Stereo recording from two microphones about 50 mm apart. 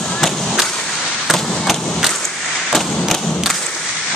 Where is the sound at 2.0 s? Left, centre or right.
Centre.